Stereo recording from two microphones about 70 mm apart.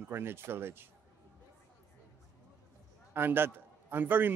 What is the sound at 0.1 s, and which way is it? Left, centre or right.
Speech, right.